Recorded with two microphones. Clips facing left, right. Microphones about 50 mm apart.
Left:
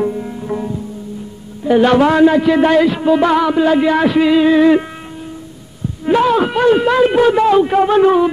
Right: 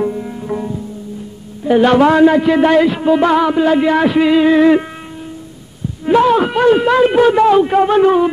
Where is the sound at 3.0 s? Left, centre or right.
Centre.